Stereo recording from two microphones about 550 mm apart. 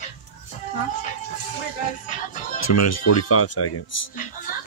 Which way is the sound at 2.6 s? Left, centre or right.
Left.